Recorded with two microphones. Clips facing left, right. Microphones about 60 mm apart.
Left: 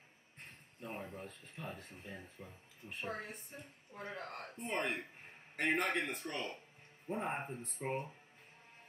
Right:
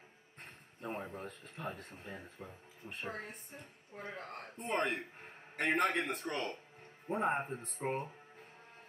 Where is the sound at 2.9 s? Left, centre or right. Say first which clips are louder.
Even; centre.